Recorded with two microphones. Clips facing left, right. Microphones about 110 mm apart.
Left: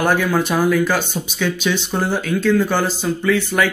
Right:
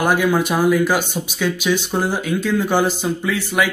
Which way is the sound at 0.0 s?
10° right (ahead or behind).